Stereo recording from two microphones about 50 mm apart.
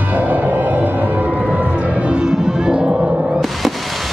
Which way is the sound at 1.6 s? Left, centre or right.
Right.